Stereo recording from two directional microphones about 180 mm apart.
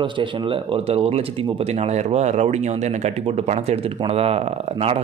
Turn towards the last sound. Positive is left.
turn(degrees=-35)  # may be behind; listen again after turning